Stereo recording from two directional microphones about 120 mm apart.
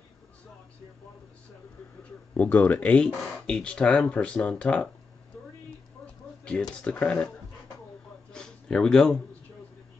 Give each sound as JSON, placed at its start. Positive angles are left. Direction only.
{"t": 2.3, "sound": "speech", "side_deg": 15}
{"t": 6.8, "sound": "speech", "side_deg": 10}
{"t": 8.3, "sound": "a sound", "side_deg": 5}